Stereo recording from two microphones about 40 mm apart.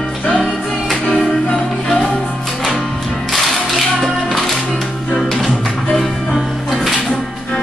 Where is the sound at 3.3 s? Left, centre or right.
Centre.